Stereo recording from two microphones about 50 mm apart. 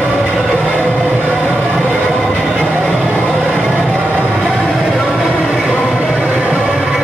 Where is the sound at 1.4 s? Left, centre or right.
Left.